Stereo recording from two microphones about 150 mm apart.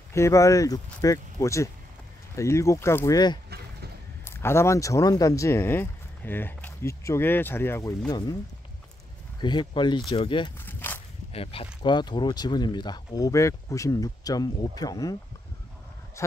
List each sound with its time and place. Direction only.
0.1 s speech: 20° left (ahead or behind)
8.1 s speech: 25° left (ahead or behind)
9.4 s speech: 30° left (ahead or behind)
10.6 s walk: 15° left (ahead or behind)
11.3 s speech: 35° left (ahead or behind)
16.2 s speech: 20° left (ahead or behind)